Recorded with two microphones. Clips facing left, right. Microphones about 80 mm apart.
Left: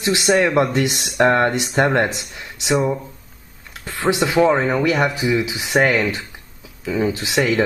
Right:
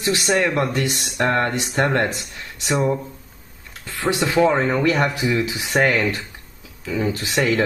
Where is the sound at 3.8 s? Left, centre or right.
Left.